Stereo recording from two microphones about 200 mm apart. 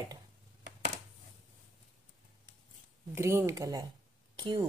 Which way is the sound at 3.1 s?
15° right (ahead or behind).